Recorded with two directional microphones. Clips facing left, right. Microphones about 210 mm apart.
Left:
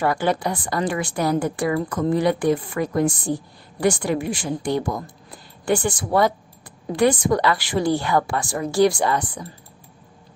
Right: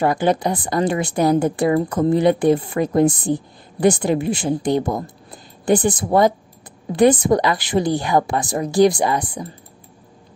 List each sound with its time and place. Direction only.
0.0 s a woman's voice: 20° right (ahead or behind)